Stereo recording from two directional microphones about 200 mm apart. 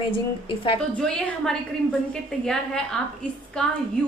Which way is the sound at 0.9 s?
5° left (ahead or behind).